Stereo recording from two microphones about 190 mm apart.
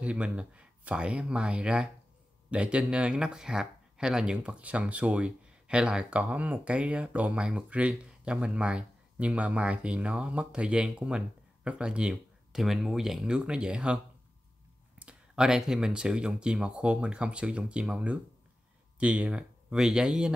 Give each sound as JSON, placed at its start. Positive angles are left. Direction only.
{"t": 0.0, "sound": "speech", "side_deg": -5}
{"t": 15.0, "sound": "speech", "side_deg": -5}